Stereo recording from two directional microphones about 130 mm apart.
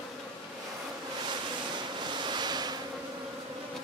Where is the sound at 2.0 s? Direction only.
35° right (ahead or behind).